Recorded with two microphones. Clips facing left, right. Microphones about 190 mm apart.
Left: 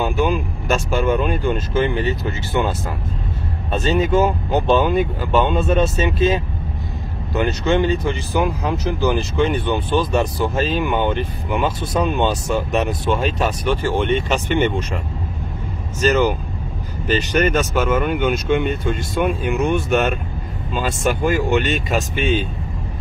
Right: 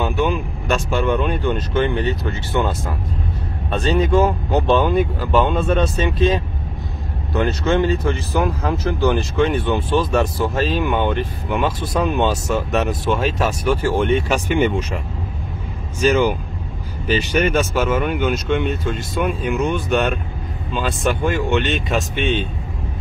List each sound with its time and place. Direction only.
0.0 s speech: centre (ahead or behind)
4.0 s speech: centre (ahead or behind)
16.0 s speech: 10° right (ahead or behind)